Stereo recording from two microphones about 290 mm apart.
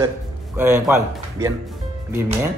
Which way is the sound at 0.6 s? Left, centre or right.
Centre.